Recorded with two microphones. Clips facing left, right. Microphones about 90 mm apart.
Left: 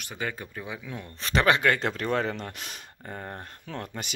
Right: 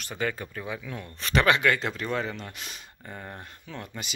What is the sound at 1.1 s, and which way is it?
Speech, 30° left (ahead or behind).